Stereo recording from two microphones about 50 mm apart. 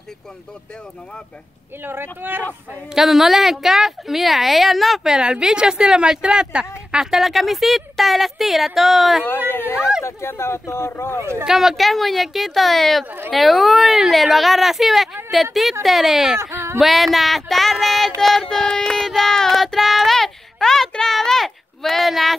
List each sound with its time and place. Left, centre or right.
1.8 s speech: right
2.9 s a woman's voice: centre
5.1 s a woman's voice: centre
9.5 s speech: left
10.2 s speech: left
11.1 s speech: right
11.4 s a woman's voice: centre
16.3 s speech: right
16.7 s a woman's voice: centre
18.2 s child singing: centre
21.1 s a sound: centre